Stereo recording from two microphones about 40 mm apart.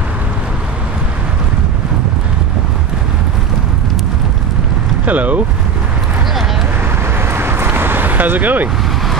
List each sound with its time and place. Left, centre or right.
5.0 s vehicle: right
7.2 s vehicle: right